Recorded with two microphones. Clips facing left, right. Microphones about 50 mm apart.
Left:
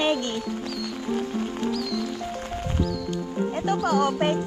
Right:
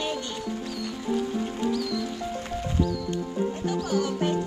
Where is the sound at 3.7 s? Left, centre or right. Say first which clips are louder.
Left 7 dB; left.